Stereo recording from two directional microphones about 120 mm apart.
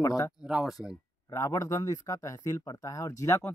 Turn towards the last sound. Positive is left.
turn(degrees=25)  # may be behind; listen again after turning